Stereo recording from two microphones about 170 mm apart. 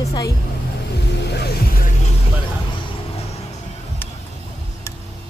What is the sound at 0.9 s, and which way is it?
Vehicle, 80° left.